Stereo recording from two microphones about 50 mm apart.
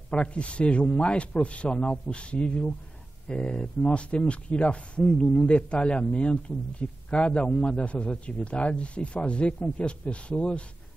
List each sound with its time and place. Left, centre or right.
0.1 s a man's voice: left